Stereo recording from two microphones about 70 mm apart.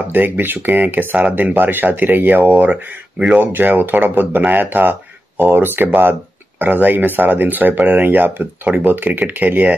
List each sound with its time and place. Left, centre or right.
0.1 s speech: right